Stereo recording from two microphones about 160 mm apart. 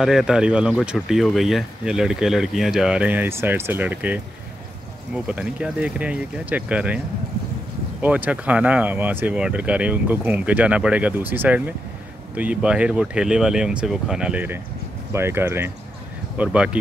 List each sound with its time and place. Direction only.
0.0 s speech: 5° right (ahead or behind)
8.0 s speech: 10° right (ahead or behind)